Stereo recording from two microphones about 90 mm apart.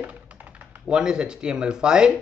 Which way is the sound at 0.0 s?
15° right (ahead or behind).